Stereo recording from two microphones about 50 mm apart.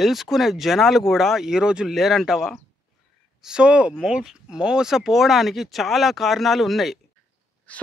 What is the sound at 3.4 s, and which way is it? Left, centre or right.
Speech, centre.